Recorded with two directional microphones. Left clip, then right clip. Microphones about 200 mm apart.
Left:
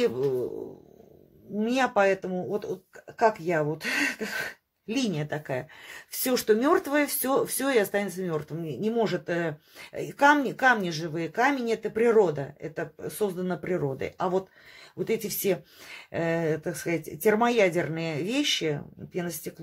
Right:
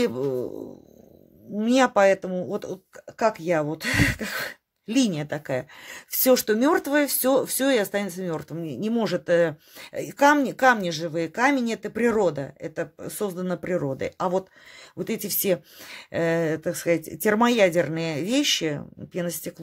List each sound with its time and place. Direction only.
1.6 s speech: 45° right (ahead or behind)